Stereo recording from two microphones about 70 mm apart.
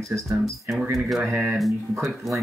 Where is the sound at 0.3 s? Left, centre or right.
Centre.